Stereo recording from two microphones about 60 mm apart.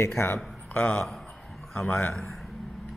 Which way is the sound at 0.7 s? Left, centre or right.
Left.